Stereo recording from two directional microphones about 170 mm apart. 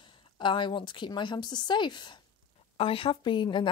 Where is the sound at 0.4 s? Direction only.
30° left (ahead or behind).